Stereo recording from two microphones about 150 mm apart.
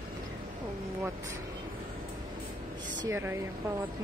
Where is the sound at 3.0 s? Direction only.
15° right (ahead or behind).